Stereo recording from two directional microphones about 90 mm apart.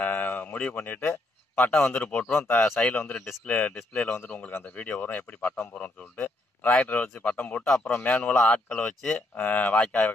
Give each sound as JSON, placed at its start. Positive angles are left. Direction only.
{"t": 0.0, "sound": "speech", "side_deg": 20}